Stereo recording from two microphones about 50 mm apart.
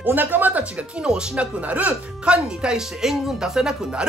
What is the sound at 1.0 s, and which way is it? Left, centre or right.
Speech, right.